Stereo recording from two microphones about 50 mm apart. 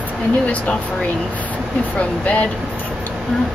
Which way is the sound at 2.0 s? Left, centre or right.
Left.